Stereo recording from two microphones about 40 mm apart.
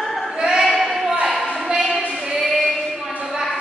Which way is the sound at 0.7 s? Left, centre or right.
Centre.